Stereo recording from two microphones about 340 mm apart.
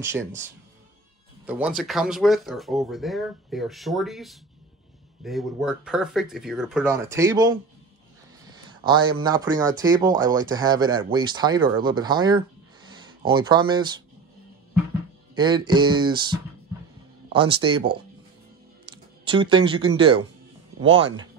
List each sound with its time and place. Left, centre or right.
0.0 s speech: centre
8.5 s a sound: centre
9.2 s speech: centre
12.8 s a sound: centre
13.3 s speech: centre
15.3 s speech: centre
19.2 s speech: centre